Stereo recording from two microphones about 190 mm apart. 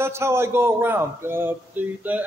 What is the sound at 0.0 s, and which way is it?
A man's voice, 15° right (ahead or behind).